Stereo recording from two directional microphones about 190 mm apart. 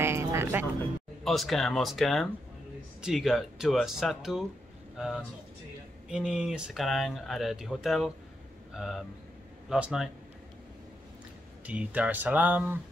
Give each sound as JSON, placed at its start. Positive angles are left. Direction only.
{"t": 0.0, "sound": "music", "side_deg": -15}
{"t": 1.2, "sound": "speech", "side_deg": 0}
{"t": 11.6, "sound": "speech", "side_deg": -5}